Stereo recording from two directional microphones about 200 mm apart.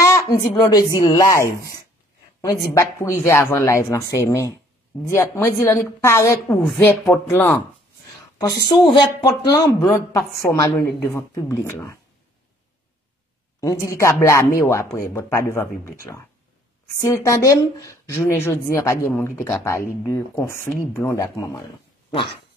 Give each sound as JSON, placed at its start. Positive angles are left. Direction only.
{"t": 0.1, "sound": "a woman's voice", "side_deg": 15}
{"t": 8.9, "sound": "speech", "side_deg": 20}
{"t": 13.6, "sound": "speech", "side_deg": 15}